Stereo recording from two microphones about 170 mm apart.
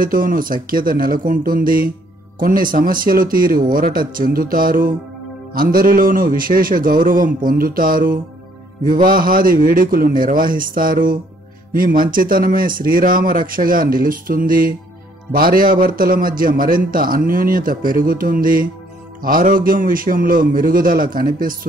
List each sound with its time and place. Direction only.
0.0 s a man's voice: 55° right (ahead or behind)